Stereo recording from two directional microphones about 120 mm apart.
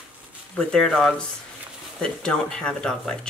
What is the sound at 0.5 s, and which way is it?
Speech, 5° left (ahead or behind).